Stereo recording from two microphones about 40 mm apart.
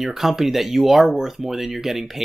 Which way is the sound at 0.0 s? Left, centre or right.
Centre.